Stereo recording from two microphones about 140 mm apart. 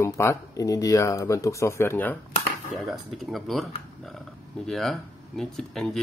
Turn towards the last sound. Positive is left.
turn(degrees=0)  # may be behind; listen again after turning